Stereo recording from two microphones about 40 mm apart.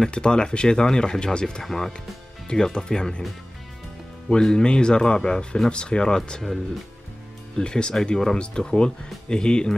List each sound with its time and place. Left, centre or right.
0.1 s speech: left
1.6 s speech: centre
2.4 s speech: centre
4.3 s speech: centre
7.5 s speech: left